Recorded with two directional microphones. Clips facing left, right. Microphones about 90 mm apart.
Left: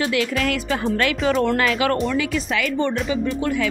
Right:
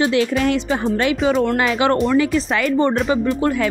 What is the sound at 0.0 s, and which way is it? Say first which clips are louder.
Speech: right 4 dB; 30° right (ahead or behind).